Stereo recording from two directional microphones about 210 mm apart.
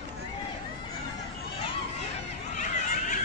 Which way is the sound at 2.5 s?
40° left (ahead or behind).